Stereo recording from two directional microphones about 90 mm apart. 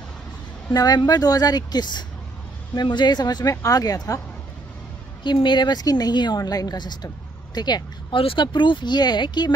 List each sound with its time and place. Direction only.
0.7 s a woman's voice: 50° left (ahead or behind)
5.2 s a woman's voice: 60° left (ahead or behind)
8.2 s speech: 75° left (ahead or behind); by 9.5 s 55° left (ahead or behind)